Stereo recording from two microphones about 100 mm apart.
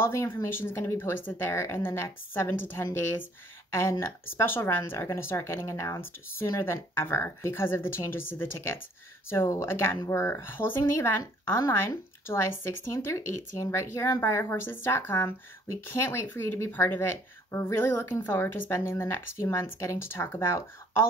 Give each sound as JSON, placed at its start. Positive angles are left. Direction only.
{"t": 0.0, "sound": "speech", "side_deg": 25}